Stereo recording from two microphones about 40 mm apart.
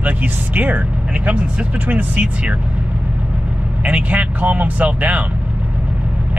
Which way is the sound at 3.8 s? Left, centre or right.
Right.